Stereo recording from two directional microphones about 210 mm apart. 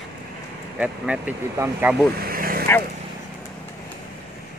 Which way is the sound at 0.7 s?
5° right (ahead or behind).